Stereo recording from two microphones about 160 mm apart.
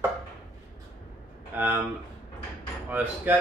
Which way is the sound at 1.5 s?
10° right (ahead or behind).